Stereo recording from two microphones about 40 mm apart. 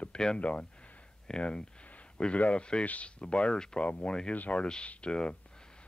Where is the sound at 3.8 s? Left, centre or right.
Left.